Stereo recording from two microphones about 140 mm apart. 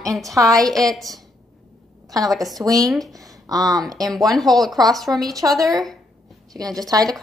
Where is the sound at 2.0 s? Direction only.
25° right (ahead or behind).